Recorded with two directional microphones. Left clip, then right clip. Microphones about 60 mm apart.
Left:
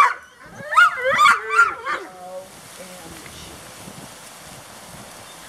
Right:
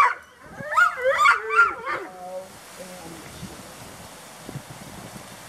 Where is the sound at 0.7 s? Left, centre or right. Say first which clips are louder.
Left 4 dB; left.